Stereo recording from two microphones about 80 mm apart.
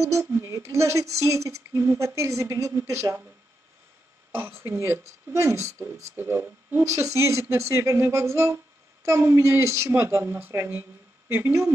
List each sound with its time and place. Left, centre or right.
0.0 s a woman's voice: right
4.3 s a woman's voice: right